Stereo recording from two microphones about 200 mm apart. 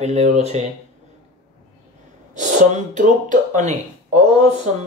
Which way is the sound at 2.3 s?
35° right (ahead or behind).